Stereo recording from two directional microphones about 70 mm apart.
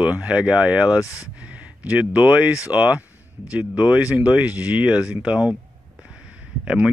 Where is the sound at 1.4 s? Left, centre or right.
Centre.